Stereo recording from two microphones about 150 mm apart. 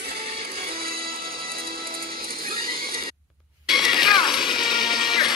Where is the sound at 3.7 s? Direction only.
5° right (ahead or behind).